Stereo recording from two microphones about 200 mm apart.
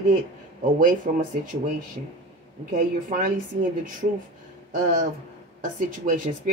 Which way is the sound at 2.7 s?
40° right (ahead or behind).